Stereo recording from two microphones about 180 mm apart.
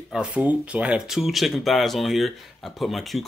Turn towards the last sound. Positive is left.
turn(degrees=0)  # may be behind; listen again after turning